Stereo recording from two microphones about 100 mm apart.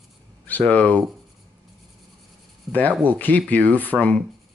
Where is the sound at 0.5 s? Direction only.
15° left (ahead or behind).